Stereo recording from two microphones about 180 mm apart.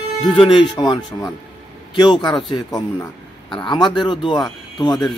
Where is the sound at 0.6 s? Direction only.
25° left (ahead or behind).